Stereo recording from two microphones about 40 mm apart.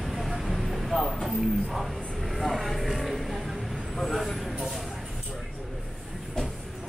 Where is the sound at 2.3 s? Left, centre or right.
Centre.